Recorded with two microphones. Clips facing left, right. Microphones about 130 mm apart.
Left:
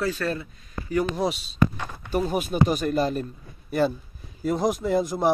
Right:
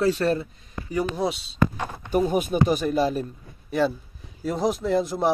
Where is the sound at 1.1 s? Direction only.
Centre (ahead or behind).